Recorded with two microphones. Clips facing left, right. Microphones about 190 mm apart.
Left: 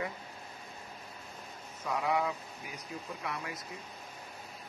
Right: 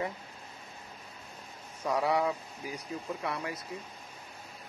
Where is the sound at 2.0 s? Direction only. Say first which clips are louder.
Right 3 dB; 35° right (ahead or behind).